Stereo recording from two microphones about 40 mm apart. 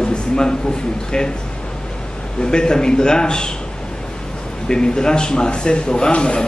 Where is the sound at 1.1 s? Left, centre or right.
Centre.